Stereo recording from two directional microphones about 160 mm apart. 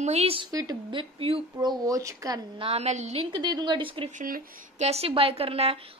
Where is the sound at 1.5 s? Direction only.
20° right (ahead or behind).